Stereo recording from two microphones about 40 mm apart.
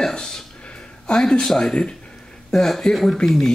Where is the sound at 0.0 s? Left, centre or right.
Centre.